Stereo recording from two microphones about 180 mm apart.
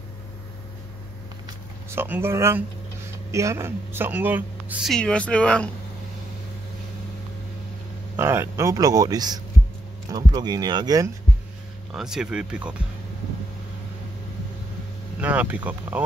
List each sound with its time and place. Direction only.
1.9 s speech: 10° right (ahead or behind)
4.9 s speech: 5° left (ahead or behind)
8.2 s speech: 15° right (ahead or behind)
11.9 s speech: 5° right (ahead or behind)
15.1 s speech: 10° right (ahead or behind)